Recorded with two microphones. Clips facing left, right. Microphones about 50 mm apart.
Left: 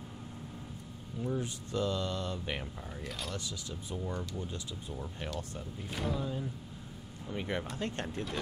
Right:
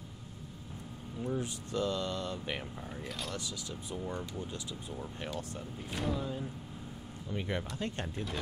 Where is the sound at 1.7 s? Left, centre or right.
Centre.